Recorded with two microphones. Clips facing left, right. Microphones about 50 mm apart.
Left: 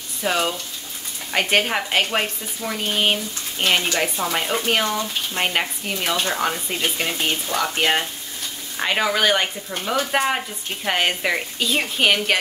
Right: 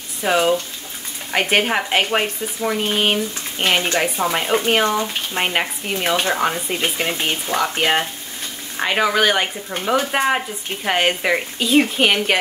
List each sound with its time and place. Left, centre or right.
0.2 s speech: centre
5.4 s speech: centre
6.8 s speech: right
7.6 s speech: centre